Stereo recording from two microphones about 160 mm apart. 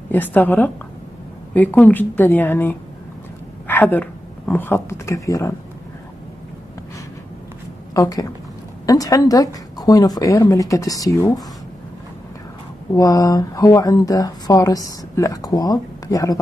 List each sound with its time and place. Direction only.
0.1 s a woman's voice: 10° left (ahead or behind)
7.9 s a woman's voice: 20° left (ahead or behind)
12.9 s speech: 20° left (ahead or behind)